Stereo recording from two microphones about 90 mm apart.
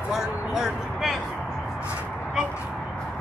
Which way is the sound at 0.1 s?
5° right (ahead or behind).